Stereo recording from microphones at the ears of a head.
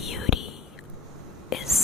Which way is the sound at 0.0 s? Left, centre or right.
Left.